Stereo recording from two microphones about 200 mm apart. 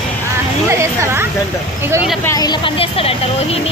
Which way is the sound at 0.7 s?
15° right (ahead or behind).